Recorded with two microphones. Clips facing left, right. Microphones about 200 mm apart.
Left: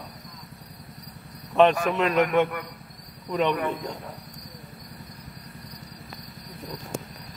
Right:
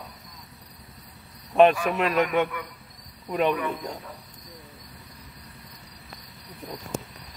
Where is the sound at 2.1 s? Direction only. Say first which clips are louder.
Left 2 dB; 50° left (ahead or behind).